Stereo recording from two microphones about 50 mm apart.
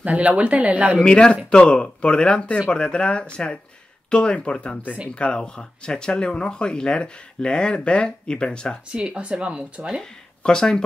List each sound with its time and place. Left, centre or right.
0.0 s speech: right
1.0 s speech: left
8.9 s speech: right
10.4 s speech: centre